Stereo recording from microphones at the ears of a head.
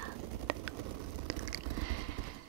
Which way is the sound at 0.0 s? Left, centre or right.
Right.